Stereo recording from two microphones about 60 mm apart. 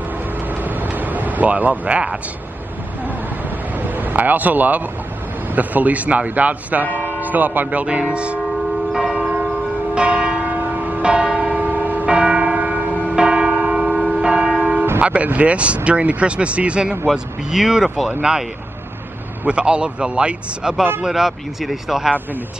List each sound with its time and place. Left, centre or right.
0.5 s vehicle: right
3.4 s vehicle: right
5.5 s speech: right
9.2 s church bell: centre
15.0 s a man's voice: right; by 18.1 s centre
19.4 s a man's voice: centre
21.0 s speech: centre